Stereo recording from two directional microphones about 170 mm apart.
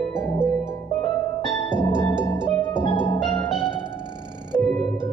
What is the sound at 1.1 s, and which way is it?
Music, 30° left (ahead or behind).